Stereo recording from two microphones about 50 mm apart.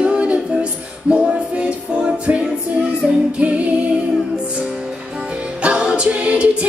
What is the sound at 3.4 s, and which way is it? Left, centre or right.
Music, right.